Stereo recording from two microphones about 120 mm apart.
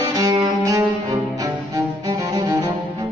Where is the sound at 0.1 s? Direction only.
30° right (ahead or behind).